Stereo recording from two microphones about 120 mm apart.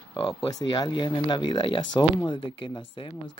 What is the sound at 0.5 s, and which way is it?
Speech, 35° left (ahead or behind).